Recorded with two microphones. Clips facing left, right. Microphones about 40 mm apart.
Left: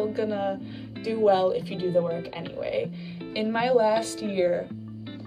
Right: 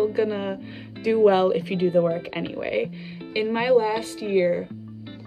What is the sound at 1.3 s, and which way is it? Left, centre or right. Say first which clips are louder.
Speech: right 2 dB; right.